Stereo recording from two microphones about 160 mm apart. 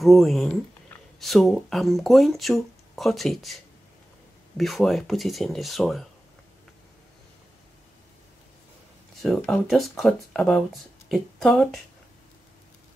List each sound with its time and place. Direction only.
0.0 s speech: centre (ahead or behind)
9.2 s speech: centre (ahead or behind)